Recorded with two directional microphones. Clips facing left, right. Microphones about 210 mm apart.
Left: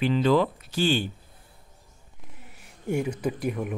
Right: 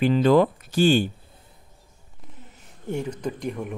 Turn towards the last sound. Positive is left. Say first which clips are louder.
# left 1 dB
turn(degrees=5)  # may be behind; listen again after turning